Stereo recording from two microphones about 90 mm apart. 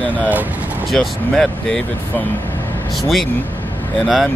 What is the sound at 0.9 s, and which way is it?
Speech, 5° left (ahead or behind).